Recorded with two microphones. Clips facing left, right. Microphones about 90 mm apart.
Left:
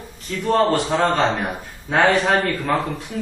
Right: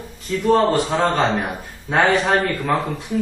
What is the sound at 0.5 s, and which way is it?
A man's voice, centre (ahead or behind).